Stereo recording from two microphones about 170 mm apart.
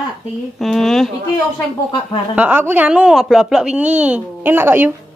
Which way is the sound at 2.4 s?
10° right (ahead or behind).